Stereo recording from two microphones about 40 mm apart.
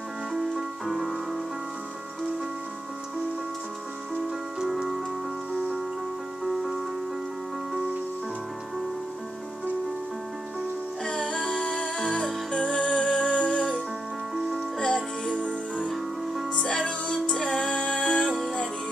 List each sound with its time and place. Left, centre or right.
0.3 s music: centre
4.6 s music: centre
6.4 s music: centre
11.1 s music: centre
14.8 s music: centre
16.5 s music: centre
18.2 s music: centre